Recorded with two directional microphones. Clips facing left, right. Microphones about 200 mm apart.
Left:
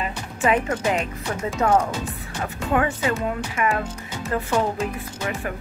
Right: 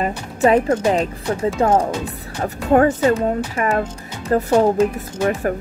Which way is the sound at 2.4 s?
40° right (ahead or behind).